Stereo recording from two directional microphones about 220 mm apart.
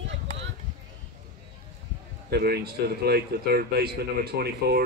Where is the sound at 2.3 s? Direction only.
45° right (ahead or behind).